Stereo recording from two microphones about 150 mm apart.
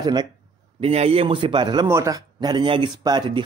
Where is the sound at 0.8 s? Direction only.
40° right (ahead or behind).